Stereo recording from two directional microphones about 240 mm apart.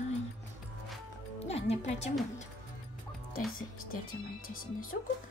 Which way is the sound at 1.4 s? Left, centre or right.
Left.